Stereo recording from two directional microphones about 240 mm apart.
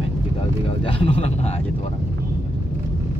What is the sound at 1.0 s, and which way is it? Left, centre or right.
Speech, left.